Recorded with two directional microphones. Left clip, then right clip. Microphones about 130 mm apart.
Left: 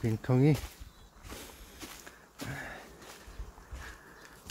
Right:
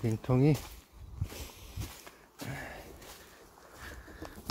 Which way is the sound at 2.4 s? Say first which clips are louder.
Left 1 dB; 35° right (ahead or behind).